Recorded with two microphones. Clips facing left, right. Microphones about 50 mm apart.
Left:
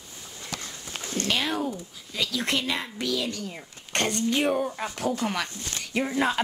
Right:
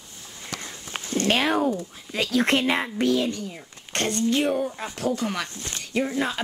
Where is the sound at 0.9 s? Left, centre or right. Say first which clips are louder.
Right 5 dB; right.